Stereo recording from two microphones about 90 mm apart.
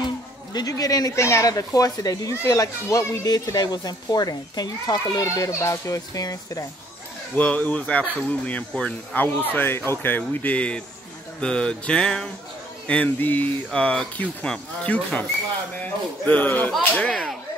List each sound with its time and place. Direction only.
0.5 s a child's voice: 45° left (ahead or behind)
7.3 s speech: 20° left (ahead or behind)
17.0 s speech: 5° left (ahead or behind)